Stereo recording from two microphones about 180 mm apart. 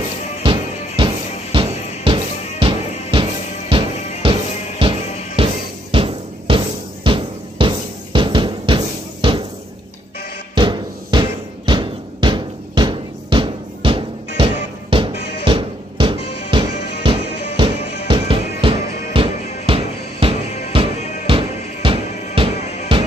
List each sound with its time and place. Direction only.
0.4 s music: 30° right (ahead or behind)
10.5 s music: 25° right (ahead or behind)